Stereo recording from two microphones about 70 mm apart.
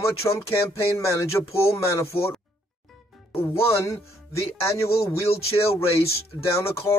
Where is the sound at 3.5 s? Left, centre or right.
Left.